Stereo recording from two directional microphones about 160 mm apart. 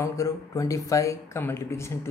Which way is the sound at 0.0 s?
20° left (ahead or behind).